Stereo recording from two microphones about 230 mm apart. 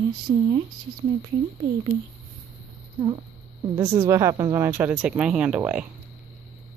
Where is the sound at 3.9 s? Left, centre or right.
Centre.